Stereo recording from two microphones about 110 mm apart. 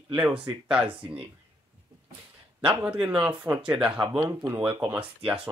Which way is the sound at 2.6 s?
15° right (ahead or behind).